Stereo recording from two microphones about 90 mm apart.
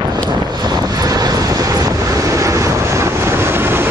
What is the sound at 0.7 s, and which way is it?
Vehicle, 45° right (ahead or behind).